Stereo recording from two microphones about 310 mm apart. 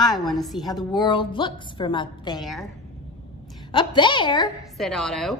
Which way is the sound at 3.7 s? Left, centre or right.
Centre.